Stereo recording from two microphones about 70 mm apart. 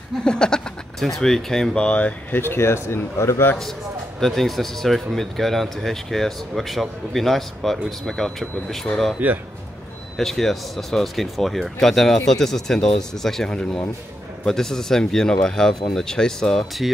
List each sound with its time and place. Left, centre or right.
0.2 s speech: centre
2.3 s speech: left
4.2 s speech: centre
10.1 s speech: centre